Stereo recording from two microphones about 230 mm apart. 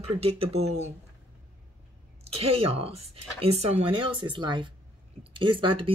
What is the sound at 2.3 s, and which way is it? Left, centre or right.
Speech, right.